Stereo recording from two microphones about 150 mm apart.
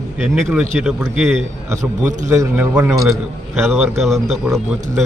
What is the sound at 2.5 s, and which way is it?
A man's voice, 10° right (ahead or behind).